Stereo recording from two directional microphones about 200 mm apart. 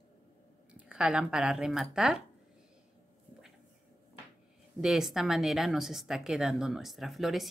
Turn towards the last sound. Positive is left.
turn(degrees=0)  # may be behind; listen again after turning